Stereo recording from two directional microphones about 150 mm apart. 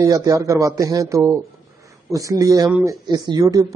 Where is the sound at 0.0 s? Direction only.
25° right (ahead or behind).